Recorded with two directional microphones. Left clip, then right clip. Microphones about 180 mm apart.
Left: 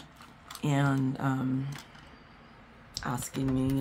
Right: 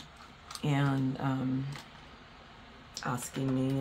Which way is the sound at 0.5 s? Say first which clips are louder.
Left 3 dB; 25° left (ahead or behind).